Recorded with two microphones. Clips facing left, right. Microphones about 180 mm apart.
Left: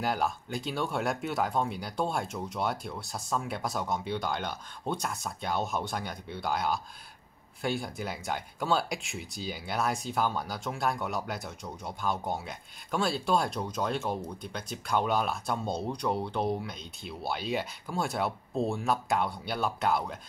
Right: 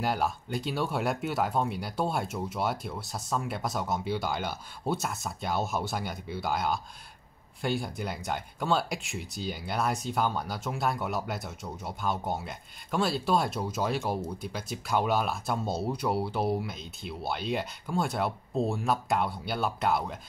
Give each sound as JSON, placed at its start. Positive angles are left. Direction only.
{"t": 0.0, "sound": "speech", "side_deg": 0}